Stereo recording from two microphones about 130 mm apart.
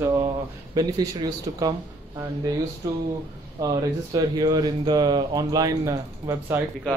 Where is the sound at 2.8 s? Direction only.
25° right (ahead or behind).